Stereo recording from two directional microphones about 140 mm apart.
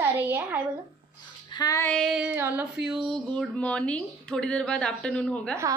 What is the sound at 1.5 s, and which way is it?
Female singing, 30° left (ahead or behind).